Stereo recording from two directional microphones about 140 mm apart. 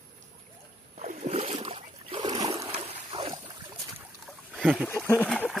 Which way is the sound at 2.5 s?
40° right (ahead or behind).